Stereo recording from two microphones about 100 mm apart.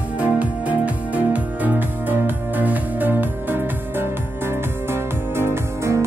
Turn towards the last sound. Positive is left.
turn(degrees=-25)  # may be behind; listen again after turning